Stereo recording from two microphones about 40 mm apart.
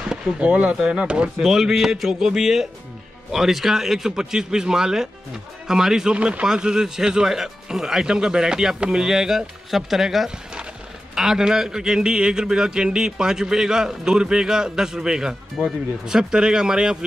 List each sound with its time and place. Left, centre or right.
0.4 s speech: right
1.4 s a man's voice: centre
6.1 s speech: right
6.4 s a man's voice: centre